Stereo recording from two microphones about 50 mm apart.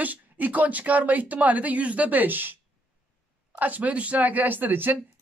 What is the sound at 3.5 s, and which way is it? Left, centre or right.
Speech, right.